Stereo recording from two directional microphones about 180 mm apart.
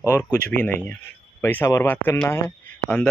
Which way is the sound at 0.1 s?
10° left (ahead or behind).